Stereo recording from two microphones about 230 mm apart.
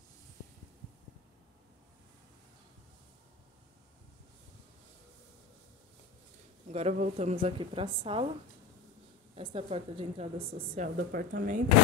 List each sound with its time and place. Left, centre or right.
6.7 s speech: right
9.3 s speech: right
10.7 s speech: right